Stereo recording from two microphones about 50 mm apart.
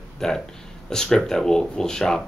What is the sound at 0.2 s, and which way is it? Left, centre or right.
Speech, centre.